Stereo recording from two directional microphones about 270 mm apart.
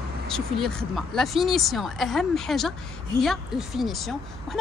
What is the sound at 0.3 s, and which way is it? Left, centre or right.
Speech, centre.